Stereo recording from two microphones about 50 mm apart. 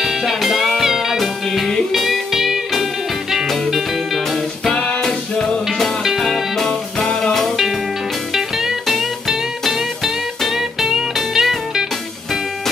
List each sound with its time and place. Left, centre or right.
0.0 s music: centre
4.7 s music: centre
6.0 s music: centre